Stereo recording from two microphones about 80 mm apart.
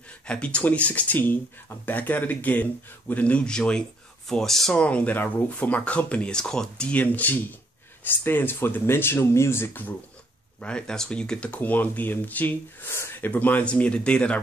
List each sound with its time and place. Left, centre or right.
0.3 s speech: centre
4.8 s speech: centre
6.9 s speech: left
10.6 s speech: centre